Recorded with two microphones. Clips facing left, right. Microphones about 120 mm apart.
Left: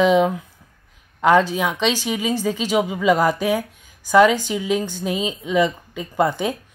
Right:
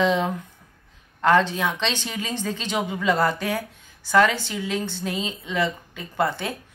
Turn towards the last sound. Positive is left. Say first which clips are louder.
# left 5 dB
turn(degrees=15)  # may be behind; listen again after turning